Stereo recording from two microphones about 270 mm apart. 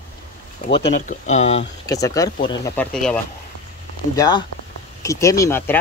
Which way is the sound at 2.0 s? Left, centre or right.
Centre.